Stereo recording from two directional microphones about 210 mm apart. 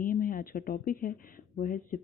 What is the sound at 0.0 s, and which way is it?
Speech, 45° left (ahead or behind).